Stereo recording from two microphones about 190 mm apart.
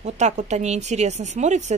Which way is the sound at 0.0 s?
35° right (ahead or behind).